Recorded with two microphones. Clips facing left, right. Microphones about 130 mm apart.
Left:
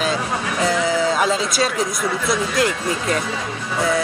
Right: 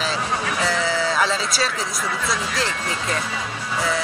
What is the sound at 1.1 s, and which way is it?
Speech, 45° left (ahead or behind).